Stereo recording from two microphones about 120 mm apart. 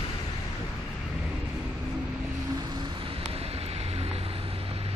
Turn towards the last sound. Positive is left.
turn(degrees=-55)  # may be behind; listen again after turning